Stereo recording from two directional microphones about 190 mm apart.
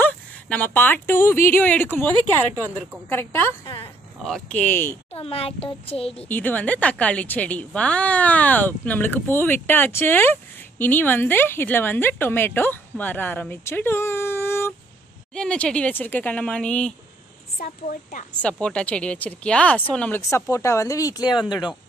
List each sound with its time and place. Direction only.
0.0 s a woman's voice: 10° left (ahead or behind)
3.6 s speech: 30° left (ahead or behind)
4.2 s a woman's voice: 5° left (ahead or behind)
5.1 s a child's voice: 30° left (ahead or behind)
6.2 s a woman's voice: 10° left (ahead or behind)
17.6 s a woman's voice: 50° left (ahead or behind)
18.3 s a woman's voice: 5° left (ahead or behind)